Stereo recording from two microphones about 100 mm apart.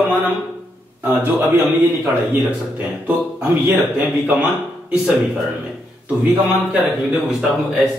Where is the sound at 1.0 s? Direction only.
20° right (ahead or behind).